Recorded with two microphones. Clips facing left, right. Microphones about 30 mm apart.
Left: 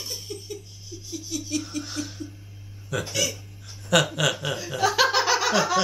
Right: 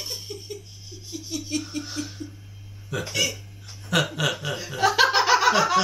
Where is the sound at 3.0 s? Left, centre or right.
Centre.